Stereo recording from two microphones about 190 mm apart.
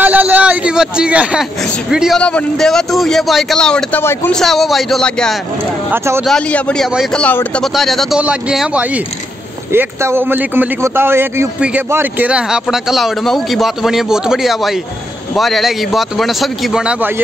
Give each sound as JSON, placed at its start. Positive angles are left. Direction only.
{"t": 0.0, "sound": "a man's voice", "side_deg": -10}
{"t": 4.4, "sound": "a man's voice", "side_deg": 0}
{"t": 5.9, "sound": "speech", "side_deg": -15}
{"t": 6.2, "sound": "a man's voice", "side_deg": 5}